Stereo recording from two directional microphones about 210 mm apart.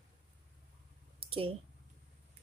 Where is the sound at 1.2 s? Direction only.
25° right (ahead or behind).